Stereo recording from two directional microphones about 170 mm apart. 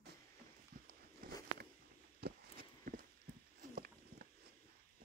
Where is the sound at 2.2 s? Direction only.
60° right (ahead or behind).